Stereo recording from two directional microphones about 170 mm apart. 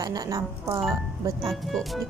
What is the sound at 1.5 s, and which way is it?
Music, centre (ahead or behind).